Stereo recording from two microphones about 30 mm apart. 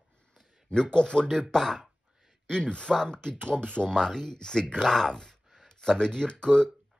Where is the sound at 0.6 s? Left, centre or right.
Left.